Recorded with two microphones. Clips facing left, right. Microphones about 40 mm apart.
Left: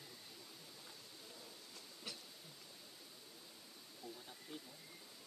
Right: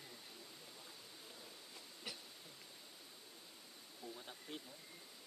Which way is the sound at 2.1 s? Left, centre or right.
Centre.